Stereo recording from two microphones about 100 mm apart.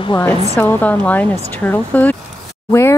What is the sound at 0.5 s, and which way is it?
Speech, 20° left (ahead or behind).